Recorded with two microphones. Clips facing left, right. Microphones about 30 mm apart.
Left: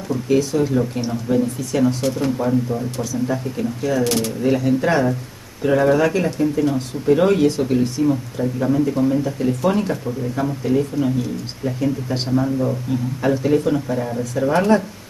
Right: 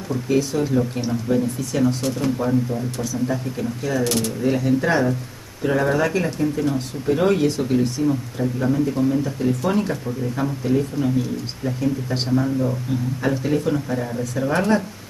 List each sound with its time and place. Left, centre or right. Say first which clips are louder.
0.1 s speech: left 3 dB; centre
0.7 s speech: left 1 dB; centre